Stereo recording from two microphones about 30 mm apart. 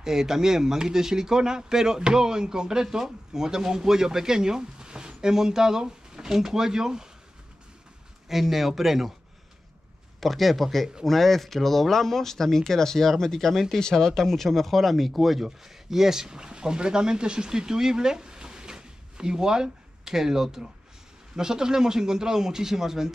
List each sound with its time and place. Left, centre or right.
0.0 s speech: centre
8.3 s speech: centre
10.2 s speech: centre
13.5 s speech: centre
13.7 s speech: centre